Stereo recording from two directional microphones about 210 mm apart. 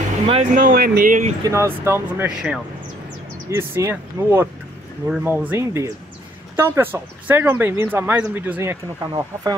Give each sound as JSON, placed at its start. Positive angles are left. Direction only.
{"t": 0.3, "sound": "speech", "side_deg": -35}
{"t": 1.4, "sound": "speech", "side_deg": -15}